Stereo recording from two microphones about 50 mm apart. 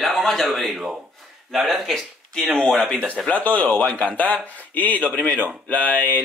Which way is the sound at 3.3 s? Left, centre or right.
Left.